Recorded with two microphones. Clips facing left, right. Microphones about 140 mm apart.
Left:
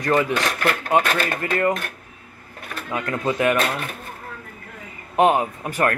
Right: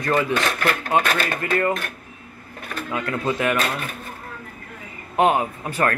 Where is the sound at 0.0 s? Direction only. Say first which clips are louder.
Left 1 dB; 15° left (ahead or behind).